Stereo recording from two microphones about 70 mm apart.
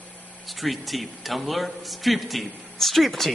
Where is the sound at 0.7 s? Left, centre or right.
Centre.